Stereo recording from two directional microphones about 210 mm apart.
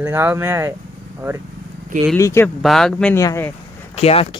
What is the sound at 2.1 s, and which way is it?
Speech, 15° left (ahead or behind).